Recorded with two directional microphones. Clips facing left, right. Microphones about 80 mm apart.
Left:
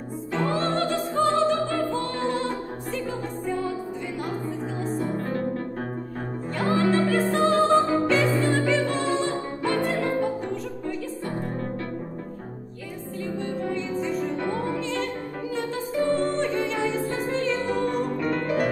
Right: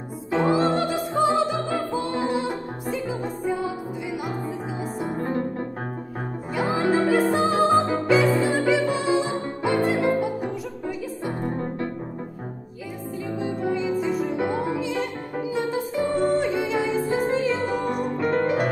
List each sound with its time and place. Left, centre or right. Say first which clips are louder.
0.3 s music: right 5 dB; centre
6.5 s music: even; centre
13.2 s music: right 2 dB; centre
18.3 s music: right 7 dB; right